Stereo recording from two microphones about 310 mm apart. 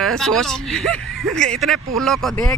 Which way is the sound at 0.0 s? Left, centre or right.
Centre.